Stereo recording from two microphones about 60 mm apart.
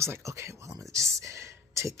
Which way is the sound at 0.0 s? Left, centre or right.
Right.